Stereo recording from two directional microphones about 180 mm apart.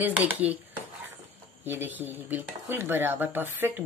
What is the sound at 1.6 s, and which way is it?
Speech, 10° right (ahead or behind).